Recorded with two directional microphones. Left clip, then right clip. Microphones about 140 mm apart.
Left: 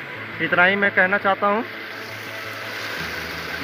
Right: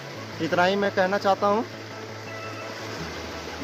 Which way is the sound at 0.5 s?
10° right (ahead or behind).